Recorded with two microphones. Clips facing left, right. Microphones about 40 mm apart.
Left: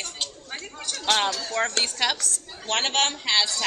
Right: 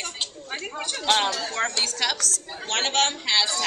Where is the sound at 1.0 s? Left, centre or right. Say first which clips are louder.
Right 1 dB; centre.